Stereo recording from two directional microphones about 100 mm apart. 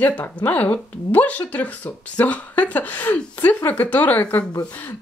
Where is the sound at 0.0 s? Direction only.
15° left (ahead or behind).